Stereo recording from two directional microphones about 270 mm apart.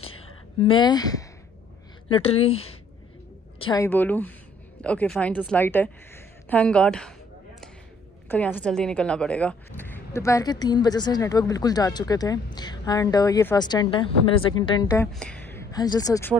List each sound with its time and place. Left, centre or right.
0.0 s a sound: centre
2.0 s a woman's voice: left; by 7.2 s centre
8.3 s a woman's voice: centre